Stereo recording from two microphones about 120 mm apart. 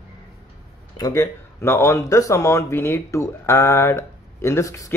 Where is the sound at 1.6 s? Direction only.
20° left (ahead or behind).